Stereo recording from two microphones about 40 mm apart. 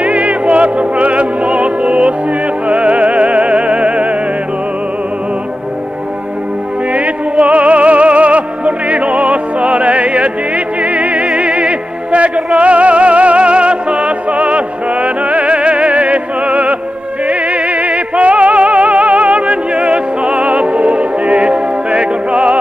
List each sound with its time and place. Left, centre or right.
0.0 s music: right
6.9 s music: right